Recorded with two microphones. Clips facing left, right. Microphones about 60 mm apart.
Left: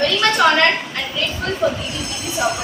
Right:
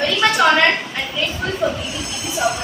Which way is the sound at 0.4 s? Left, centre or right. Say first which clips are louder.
Even; centre.